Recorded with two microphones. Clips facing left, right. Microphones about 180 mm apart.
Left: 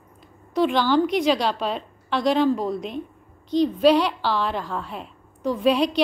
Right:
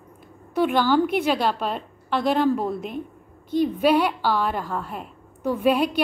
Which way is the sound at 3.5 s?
55° right (ahead or behind).